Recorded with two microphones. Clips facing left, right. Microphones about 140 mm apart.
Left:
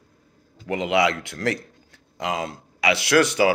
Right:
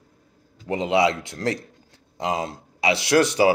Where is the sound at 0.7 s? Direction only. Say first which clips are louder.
Right 1 dB; 30° right (ahead or behind).